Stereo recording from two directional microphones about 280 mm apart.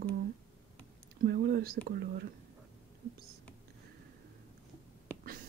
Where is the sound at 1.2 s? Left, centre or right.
Right.